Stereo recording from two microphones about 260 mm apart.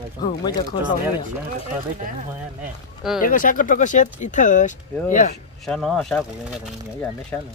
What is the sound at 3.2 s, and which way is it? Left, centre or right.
Speech, left.